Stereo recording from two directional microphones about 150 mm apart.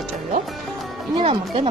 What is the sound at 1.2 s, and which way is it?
Speech, 40° right (ahead or behind).